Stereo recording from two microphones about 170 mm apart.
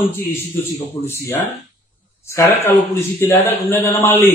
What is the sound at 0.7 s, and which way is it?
A man's voice, 15° left (ahead or behind).